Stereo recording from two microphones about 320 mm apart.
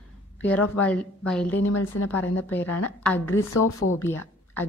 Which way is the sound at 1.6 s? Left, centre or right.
Left.